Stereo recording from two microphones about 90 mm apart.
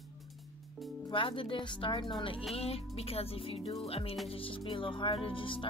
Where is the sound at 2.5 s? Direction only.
90° left.